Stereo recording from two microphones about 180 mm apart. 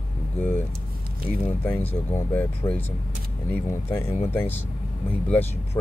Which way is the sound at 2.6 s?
25° left (ahead or behind).